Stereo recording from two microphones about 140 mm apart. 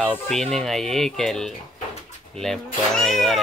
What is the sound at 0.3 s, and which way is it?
Speech, 5° left (ahead or behind).